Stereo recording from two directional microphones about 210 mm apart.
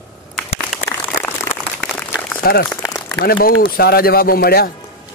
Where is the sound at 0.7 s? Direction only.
Centre (ahead or behind).